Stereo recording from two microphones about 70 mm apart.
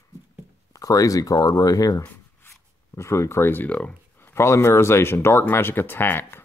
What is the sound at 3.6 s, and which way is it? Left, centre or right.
Speech, centre.